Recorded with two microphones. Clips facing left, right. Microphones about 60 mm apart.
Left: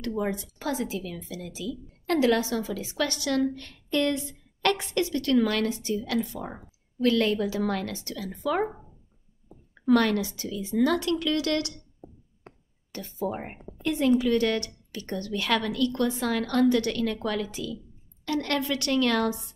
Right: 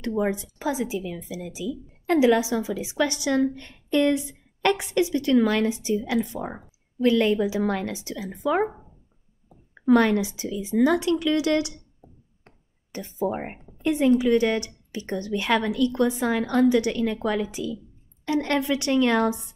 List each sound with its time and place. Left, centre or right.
0.0 s a woman's voice: centre
9.8 s a woman's voice: centre
12.9 s a woman's voice: right